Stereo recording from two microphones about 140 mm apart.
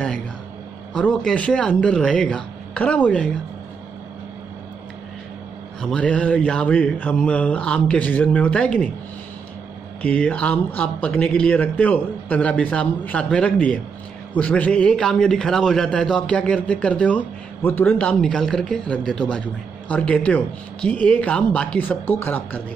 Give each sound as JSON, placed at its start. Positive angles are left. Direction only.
{"t": 0.9, "sound": "a man's voice", "side_deg": 5}
{"t": 5.8, "sound": "a man's voice", "side_deg": 5}
{"t": 10.0, "sound": "a man's voice", "side_deg": 10}